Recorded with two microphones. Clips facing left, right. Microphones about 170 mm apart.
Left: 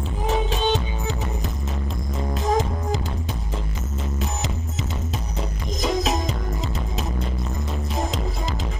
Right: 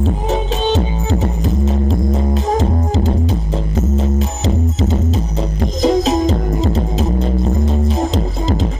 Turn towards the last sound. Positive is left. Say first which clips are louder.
# right 11 dB
turn(degrees=-30)  # may be behind; listen again after turning